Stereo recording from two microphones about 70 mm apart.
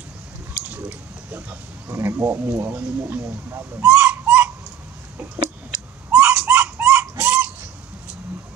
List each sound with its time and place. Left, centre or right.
0.7 s pig: right
2.0 s speech: right
6.1 s dog: right